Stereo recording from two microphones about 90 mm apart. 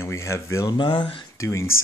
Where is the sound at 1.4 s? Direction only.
35° left (ahead or behind).